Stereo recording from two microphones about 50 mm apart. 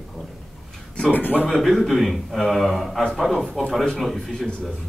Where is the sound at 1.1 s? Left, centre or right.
Left.